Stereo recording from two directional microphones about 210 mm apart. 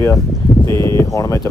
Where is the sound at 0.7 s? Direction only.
20° right (ahead or behind).